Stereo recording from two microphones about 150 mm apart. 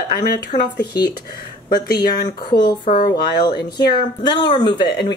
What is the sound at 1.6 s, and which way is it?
Speech, 85° left.